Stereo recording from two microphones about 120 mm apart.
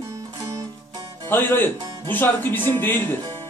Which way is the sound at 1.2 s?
15° left (ahead or behind).